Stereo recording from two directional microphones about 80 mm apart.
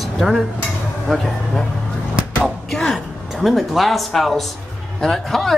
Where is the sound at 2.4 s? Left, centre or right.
Centre.